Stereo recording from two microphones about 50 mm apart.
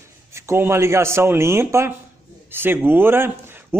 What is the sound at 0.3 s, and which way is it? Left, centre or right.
Speech, right.